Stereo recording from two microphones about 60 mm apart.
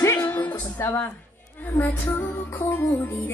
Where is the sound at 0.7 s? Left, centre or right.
Left.